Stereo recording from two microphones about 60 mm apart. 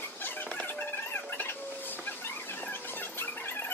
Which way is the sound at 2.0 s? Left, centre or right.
Left.